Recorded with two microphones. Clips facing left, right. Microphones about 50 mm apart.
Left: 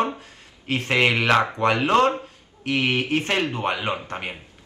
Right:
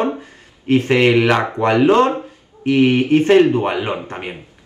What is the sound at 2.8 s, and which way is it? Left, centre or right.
Speech, right.